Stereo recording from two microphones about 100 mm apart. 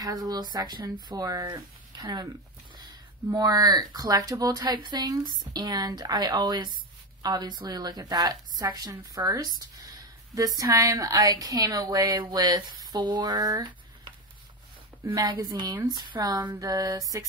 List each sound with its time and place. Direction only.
0.0 s speech: 40° right (ahead or behind)
3.3 s a woman's voice: 40° right (ahead or behind)
15.0 s a woman's voice: 55° right (ahead or behind); by 17.3 s 35° right (ahead or behind)